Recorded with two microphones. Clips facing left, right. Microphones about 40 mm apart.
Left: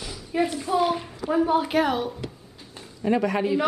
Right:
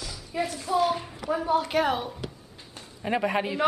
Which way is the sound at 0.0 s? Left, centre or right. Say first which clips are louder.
Left 5 dB; left.